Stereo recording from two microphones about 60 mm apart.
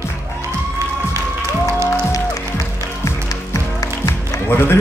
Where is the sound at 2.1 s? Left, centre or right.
Left.